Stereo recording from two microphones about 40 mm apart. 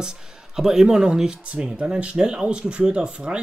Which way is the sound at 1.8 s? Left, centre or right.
Right.